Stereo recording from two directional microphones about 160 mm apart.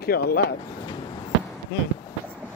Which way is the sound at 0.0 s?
75° left (ahead or behind).